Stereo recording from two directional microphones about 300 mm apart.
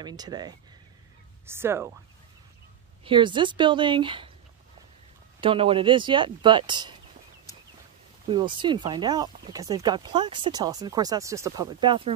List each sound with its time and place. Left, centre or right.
0.0 s speech: centre
3.0 s speech: centre
5.4 s speech: centre
8.3 s speech: centre